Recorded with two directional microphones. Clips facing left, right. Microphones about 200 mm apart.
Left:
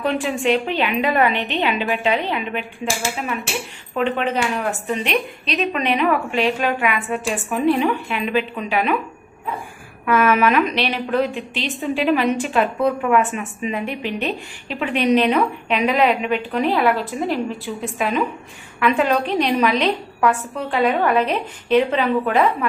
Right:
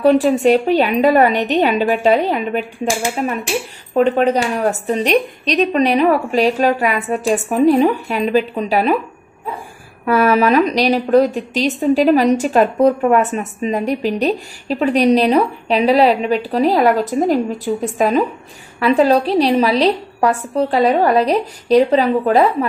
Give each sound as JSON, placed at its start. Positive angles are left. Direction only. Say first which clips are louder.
{"t": 0.0, "sound": "a woman's voice", "louder": "right 9 dB", "side_deg": -40}
{"t": 3.9, "sound": "a woman's voice", "louder": "right 7 dB", "side_deg": -40}
{"t": 10.0, "sound": "a woman's voice", "louder": "right 3 dB", "side_deg": -35}